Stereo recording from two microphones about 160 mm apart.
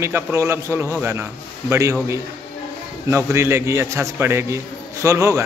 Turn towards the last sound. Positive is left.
turn(degrees=-15)  # may be behind; listen again after turning